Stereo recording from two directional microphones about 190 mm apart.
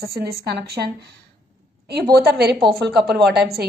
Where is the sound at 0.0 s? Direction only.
55° right (ahead or behind).